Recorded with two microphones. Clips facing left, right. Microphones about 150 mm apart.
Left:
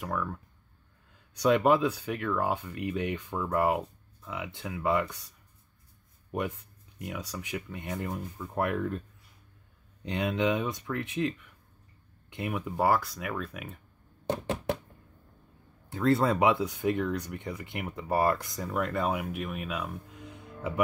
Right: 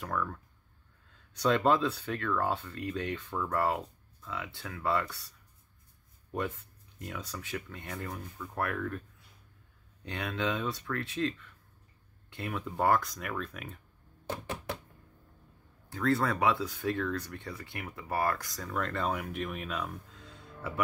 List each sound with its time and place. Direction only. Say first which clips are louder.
0.0 s speech: left 1 dB; 10° left (ahead or behind)
6.3 s speech: left 2 dB; 10° left (ahead or behind)
10.0 s speech: left 6 dB; 20° left (ahead or behind)
14.4 s a sound: left 7 dB; 25° left (ahead or behind)
15.9 s speech: left 4 dB; 25° left (ahead or behind)
18.7 s speech: left 3 dB; 10° left (ahead or behind)